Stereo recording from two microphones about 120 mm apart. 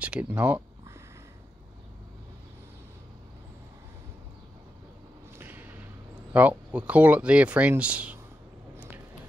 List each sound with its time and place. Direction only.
0.0 s speech: 10° right (ahead or behind)
5.4 s a sound: 15° right (ahead or behind)
6.3 s speech: 10° right (ahead or behind)